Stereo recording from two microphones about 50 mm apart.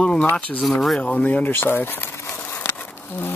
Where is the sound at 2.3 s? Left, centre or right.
Left.